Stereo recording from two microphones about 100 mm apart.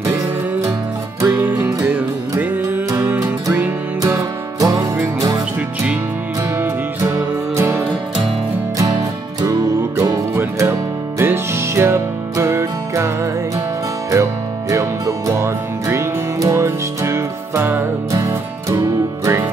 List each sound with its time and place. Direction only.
1.2 s music: 20° right (ahead or behind)
4.1 s music: 35° right (ahead or behind)
6.6 s music: 25° right (ahead or behind)
9.4 s music: 35° right (ahead or behind)